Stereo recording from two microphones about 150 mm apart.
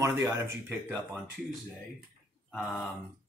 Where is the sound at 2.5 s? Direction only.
Centre (ahead or behind).